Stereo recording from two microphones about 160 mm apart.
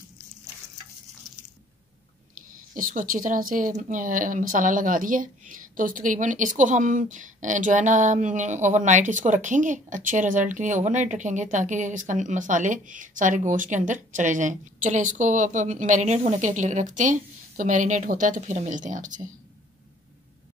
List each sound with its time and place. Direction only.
2.7 s speech: 55° right (ahead or behind)